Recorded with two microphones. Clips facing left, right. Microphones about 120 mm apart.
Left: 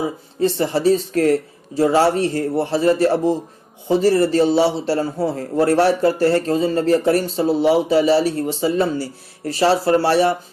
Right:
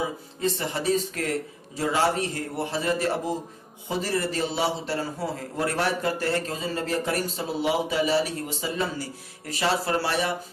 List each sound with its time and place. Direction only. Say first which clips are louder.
0.4 s speech: left 10 dB; 35° left (ahead or behind)